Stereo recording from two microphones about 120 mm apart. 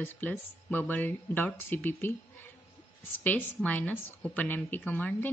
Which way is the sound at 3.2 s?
15° left (ahead or behind).